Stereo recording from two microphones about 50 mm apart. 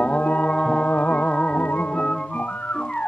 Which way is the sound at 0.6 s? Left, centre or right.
Centre.